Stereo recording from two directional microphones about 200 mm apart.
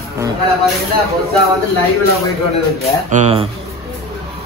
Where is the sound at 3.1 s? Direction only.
30° right (ahead or behind).